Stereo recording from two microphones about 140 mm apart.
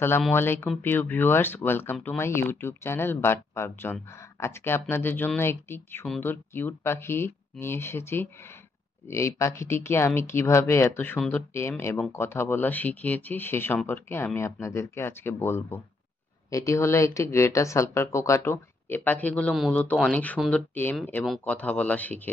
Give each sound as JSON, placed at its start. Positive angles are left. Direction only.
{"t": 0.3, "sound": "speech", "side_deg": 15}